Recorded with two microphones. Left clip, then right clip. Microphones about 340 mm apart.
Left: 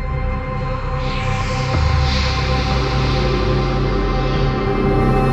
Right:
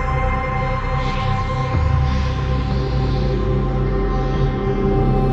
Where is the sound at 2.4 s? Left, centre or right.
Left.